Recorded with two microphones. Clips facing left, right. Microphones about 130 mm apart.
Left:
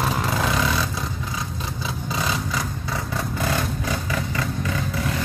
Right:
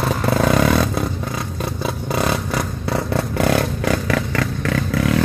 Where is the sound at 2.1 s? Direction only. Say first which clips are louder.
Right 5 dB; 60° right (ahead or behind); by 4.8 s 80° right.